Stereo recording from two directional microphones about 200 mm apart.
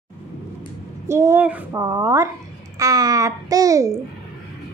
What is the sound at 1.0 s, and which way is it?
A child's voice, 15° right (ahead or behind).